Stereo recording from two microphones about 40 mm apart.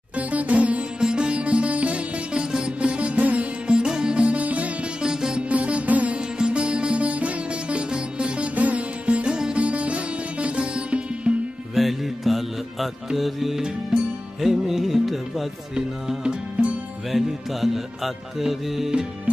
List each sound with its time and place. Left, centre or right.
0.1 s sitar: right
1.0 s music: right
3.6 s music: right
5.0 s music: centre
5.5 s music: right
6.1 s music: right
8.5 s music: right
11.7 s music: centre
16.6 s music: right
17.1 s music: centre